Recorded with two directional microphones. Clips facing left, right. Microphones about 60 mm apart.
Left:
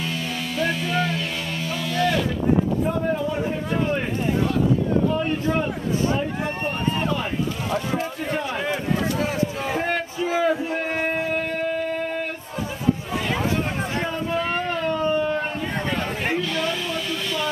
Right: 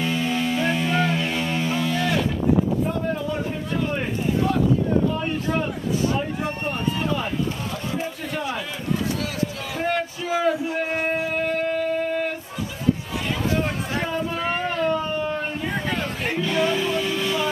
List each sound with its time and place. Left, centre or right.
0.0 s music: centre
5.2 s a man's voice: centre
9.2 s a sound: left
10.5 s speech: left
14.0 s a sound: centre
16.3 s music: centre